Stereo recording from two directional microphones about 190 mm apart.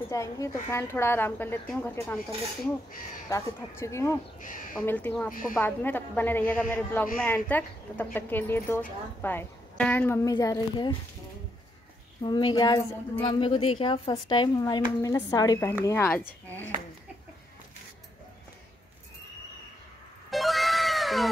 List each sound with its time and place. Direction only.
0.1 s a woman's voice: 15° left (ahead or behind)
3.3 s a woman's voice: 15° left (ahead or behind)
4.4 s speech: 45° left (ahead or behind)
4.8 s a woman's voice: 10° left (ahead or behind)
12.2 s a woman's voice: 25° left (ahead or behind)
20.2 s cat: centre (ahead or behind)